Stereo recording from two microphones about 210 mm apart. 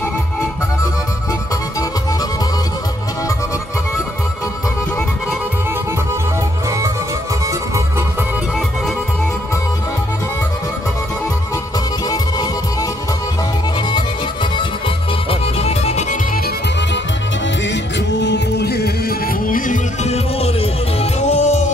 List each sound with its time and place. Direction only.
13.7 s music: 20° left (ahead or behind)
17.6 s music: 55° left (ahead or behind); by 21.7 s 35° left (ahead or behind)